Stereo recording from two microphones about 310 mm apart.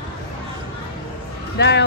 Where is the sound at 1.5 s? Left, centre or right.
Left.